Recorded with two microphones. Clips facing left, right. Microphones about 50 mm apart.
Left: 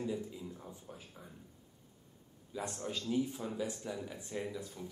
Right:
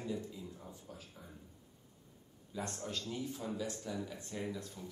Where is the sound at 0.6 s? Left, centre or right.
Left.